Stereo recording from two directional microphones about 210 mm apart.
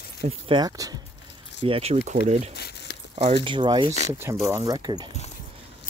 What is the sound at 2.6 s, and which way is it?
Keys jangling, 50° left (ahead or behind).